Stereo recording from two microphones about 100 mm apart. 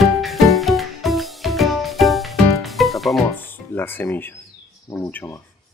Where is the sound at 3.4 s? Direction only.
20° left (ahead or behind).